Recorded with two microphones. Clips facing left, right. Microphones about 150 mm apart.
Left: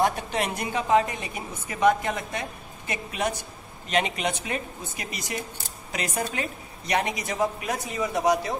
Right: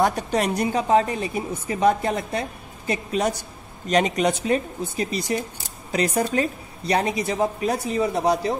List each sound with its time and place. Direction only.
0.0 s a woman's voice: 40° right (ahead or behind)